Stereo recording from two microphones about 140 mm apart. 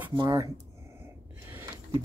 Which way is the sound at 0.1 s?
35° right (ahead or behind).